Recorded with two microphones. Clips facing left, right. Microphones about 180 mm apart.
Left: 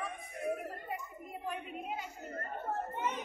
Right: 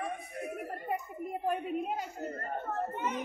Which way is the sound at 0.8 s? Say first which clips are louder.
Right 7 dB; 50° right (ahead or behind).